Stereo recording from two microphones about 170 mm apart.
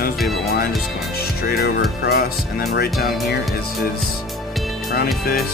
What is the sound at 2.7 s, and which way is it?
Music, 65° left (ahead or behind).